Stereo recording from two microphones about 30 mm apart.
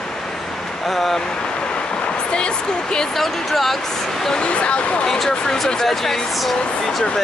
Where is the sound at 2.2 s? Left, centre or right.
Left.